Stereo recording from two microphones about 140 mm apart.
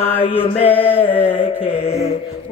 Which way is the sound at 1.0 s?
40° left (ahead or behind).